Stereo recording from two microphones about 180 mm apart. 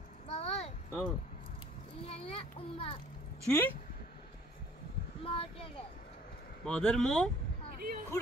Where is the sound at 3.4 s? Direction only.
10° left (ahead or behind).